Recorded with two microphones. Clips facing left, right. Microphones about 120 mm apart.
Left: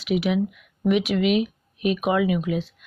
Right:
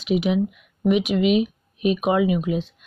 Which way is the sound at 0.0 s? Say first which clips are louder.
Right 2 dB; 25° right (ahead or behind).